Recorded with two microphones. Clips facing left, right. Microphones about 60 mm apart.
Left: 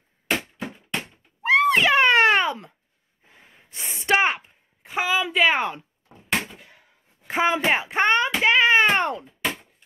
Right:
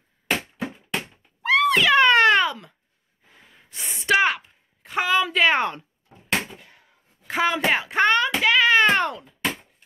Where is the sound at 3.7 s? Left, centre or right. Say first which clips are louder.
Even; left.